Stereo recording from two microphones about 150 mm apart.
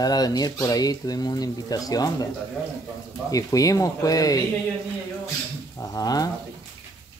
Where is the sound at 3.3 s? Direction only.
25° left (ahead or behind).